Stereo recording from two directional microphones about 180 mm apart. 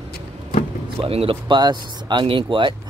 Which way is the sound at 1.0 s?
30° right (ahead or behind).